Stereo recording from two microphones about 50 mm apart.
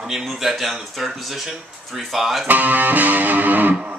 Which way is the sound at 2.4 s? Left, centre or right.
Right.